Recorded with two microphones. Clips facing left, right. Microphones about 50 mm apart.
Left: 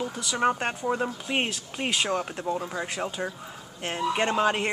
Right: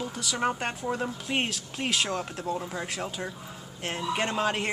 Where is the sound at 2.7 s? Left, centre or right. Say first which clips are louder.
Left 3 dB; centre.